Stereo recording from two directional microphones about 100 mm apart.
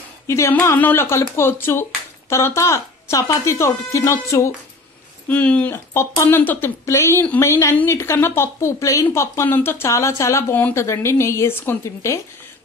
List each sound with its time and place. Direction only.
0.3 s speech: 25° left (ahead or behind)
5.3 s speech: 15° left (ahead or behind)
5.7 s speech: 25° left (ahead or behind)